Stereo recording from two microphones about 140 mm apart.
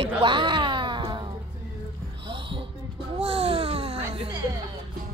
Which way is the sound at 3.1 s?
45° right (ahead or behind).